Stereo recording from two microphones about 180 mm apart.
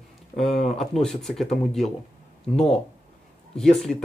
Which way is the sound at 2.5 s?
35° left (ahead or behind).